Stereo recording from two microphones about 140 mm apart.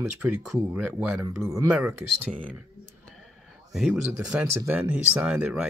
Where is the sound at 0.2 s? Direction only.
10° right (ahead or behind).